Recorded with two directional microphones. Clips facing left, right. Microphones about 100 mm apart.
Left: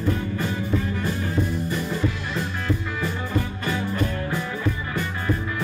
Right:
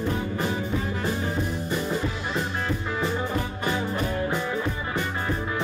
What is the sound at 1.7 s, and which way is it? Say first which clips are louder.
Music: left 1 dB; 20° right (ahead or behind).